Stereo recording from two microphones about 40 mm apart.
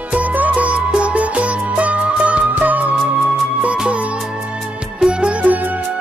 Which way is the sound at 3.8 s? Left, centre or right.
Right.